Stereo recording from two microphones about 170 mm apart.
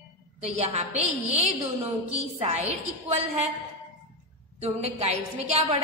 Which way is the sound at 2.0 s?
40° right (ahead or behind).